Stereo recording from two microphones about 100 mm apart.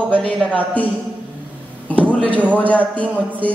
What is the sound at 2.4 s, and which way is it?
Music, 15° right (ahead or behind).